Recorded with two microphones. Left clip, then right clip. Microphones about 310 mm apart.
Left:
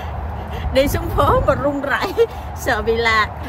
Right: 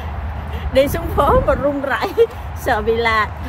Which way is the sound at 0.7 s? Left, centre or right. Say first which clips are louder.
Right 2 dB; centre.